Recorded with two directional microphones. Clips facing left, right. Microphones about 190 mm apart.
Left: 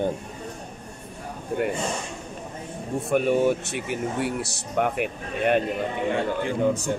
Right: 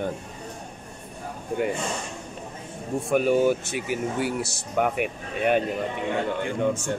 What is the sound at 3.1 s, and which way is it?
Speech, centre (ahead or behind).